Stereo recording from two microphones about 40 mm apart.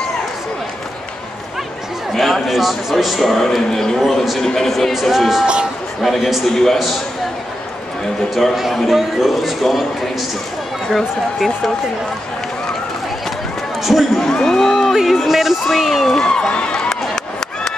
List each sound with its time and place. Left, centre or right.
2.1 s speech: centre
8.8 s speech: centre
10.9 s speech: centre
13.8 s speech: centre
14.2 s speech: centre
15.2 s speech: centre
16.2 s speech: centre